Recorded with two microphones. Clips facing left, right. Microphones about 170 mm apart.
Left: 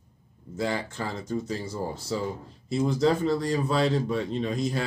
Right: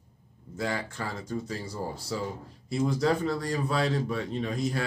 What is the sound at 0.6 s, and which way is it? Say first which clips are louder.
A man's voice: left 3 dB; 25° left (ahead or behind).